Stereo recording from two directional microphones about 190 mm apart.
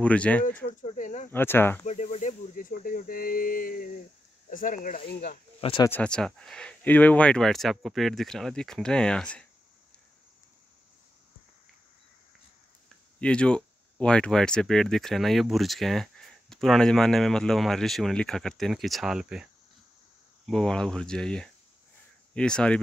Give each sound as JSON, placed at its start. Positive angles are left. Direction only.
{"t": 0.0, "sound": "speech", "side_deg": 5}
{"t": 0.8, "sound": "a sound", "side_deg": 40}
{"t": 1.3, "sound": "speech", "side_deg": 10}
{"t": 1.9, "sound": "snake", "side_deg": 40}
{"t": 4.5, "sound": "speech", "side_deg": 45}
{"t": 5.6, "sound": "speech", "side_deg": 30}
{"t": 5.9, "sound": "speech", "side_deg": 5}
{"t": 13.2, "sound": "speech", "side_deg": 5}